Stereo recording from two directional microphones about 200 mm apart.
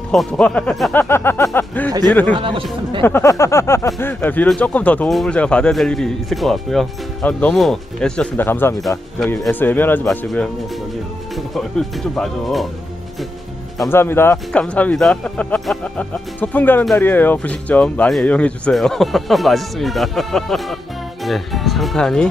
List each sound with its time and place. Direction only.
0.1 s speech: 5° left (ahead or behind)
1.9 s speech: 20° right (ahead or behind)
3.0 s speech: 10° left (ahead or behind)
11.5 s speech: centre (ahead or behind)
13.8 s speech: 10° left (ahead or behind)